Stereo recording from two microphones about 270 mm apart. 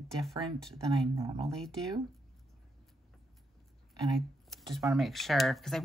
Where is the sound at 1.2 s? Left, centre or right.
Centre.